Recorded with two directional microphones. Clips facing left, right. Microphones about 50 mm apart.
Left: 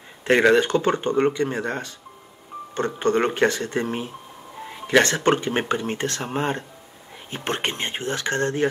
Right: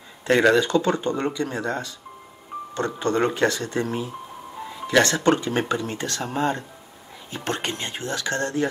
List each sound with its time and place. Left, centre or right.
0.2 s speech: left